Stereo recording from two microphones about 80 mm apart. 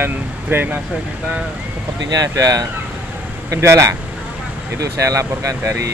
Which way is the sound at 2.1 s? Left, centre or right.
Right.